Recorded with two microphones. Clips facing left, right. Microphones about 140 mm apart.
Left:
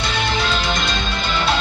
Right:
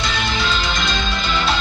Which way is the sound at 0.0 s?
60° left (ahead or behind).